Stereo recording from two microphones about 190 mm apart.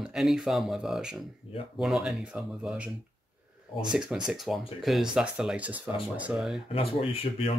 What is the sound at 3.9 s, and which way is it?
Speech, 5° right (ahead or behind).